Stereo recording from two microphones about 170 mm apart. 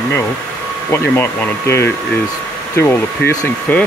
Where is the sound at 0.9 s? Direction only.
15° left (ahead or behind).